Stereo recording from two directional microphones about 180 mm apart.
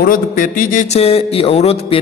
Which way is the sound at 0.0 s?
50° left (ahead or behind).